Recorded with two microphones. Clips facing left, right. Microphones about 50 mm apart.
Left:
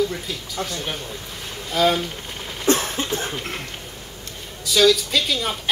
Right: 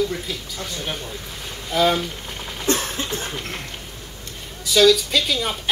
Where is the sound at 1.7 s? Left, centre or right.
Centre.